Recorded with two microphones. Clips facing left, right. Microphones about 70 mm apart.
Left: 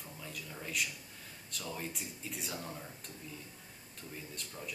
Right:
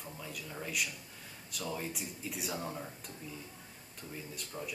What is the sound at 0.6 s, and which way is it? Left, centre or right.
Speech, centre.